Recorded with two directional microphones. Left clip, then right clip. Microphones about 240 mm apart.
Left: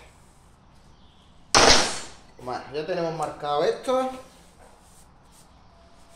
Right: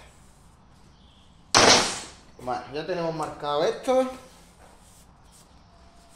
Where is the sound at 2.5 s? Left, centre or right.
Centre.